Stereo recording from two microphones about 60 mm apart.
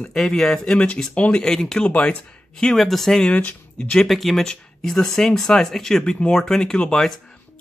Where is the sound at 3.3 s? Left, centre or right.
Centre.